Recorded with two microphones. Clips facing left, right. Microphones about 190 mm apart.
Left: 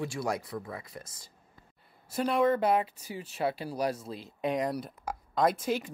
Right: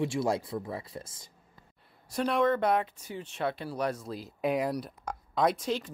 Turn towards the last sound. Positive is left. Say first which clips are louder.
# even
turn(degrees=5)  # may be behind; listen again after turning